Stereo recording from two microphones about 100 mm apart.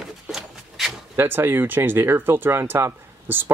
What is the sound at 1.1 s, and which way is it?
Speech, 20° right (ahead or behind).